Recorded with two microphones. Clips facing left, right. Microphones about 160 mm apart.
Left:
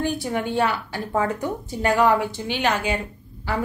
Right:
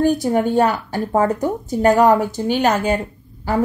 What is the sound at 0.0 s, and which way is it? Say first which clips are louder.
A woman's voice: right 8 dB; 40° right (ahead or behind).